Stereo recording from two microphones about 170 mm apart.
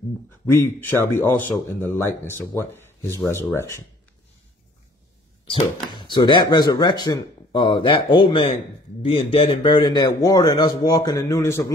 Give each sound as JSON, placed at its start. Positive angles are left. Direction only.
{"t": 0.5, "sound": "speech", "side_deg": 15}
{"t": 5.5, "sound": "speech", "side_deg": 30}